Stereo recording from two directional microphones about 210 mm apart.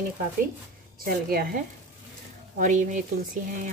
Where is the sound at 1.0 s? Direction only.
45° right (ahead or behind).